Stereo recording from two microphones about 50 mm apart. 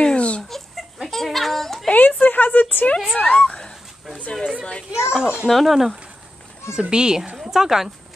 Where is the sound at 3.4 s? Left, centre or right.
Centre.